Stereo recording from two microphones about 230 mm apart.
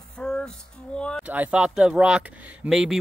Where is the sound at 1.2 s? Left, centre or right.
Centre.